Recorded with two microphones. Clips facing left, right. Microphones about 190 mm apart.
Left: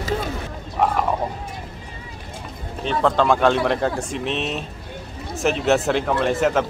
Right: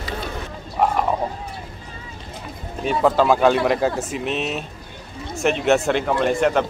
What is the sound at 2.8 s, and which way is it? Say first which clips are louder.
Speech: right 2 dB; 10° right (ahead or behind).